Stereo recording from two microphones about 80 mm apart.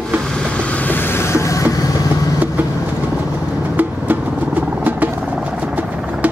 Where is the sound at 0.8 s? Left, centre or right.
Left.